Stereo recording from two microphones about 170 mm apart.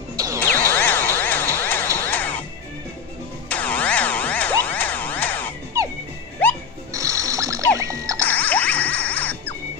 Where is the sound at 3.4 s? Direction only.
10° left (ahead or behind).